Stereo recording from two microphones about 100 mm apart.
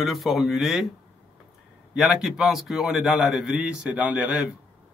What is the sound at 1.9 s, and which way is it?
A man's voice, 5° right (ahead or behind).